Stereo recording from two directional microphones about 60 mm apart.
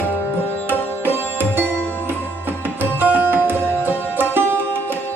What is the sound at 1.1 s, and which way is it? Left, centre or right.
Music, right.